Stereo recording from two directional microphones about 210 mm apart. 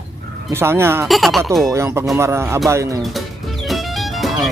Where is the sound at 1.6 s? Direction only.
15° right (ahead or behind).